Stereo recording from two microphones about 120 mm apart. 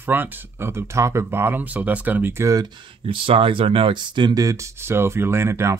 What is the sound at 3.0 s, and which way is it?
Speech, 50° right (ahead or behind).